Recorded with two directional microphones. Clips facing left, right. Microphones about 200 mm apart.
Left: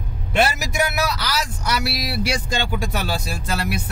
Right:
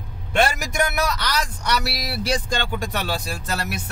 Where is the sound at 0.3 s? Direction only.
5° left (ahead or behind).